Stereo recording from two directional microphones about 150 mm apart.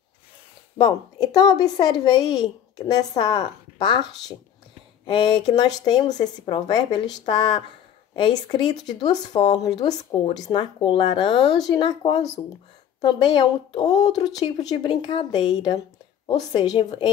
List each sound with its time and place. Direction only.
0.7 s a woman's voice: 25° left (ahead or behind)